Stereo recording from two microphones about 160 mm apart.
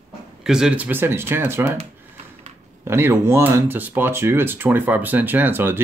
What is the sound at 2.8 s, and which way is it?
Speech, 15° right (ahead or behind).